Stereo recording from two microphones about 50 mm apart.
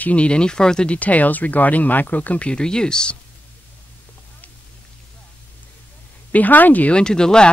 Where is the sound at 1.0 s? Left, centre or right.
Left.